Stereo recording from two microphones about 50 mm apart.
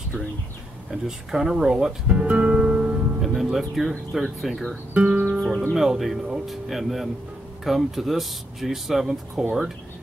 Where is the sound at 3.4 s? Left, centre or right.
Centre.